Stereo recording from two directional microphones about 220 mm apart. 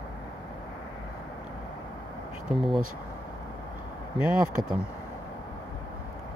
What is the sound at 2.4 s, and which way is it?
Speech, centre (ahead or behind).